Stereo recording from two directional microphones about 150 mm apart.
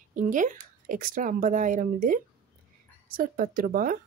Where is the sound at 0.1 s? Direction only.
60° right (ahead or behind).